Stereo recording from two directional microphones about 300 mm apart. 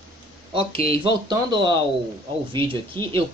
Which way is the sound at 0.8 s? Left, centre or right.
Left.